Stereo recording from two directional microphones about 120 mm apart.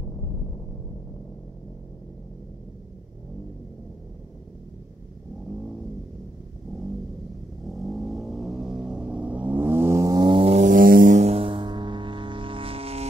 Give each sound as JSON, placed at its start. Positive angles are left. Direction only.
{"t": 7.6, "sound": "vehicle", "side_deg": 0}
{"t": 10.2, "sound": "vehicle", "side_deg": -45}
{"t": 10.5, "sound": "a sound", "side_deg": -90}